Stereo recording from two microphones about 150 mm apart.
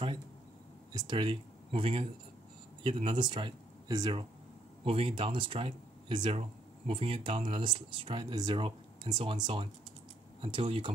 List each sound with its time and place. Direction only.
0.9 s speech: 30° right (ahead or behind)